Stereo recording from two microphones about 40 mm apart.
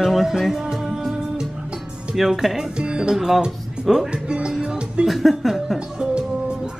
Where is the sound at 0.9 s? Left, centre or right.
Centre.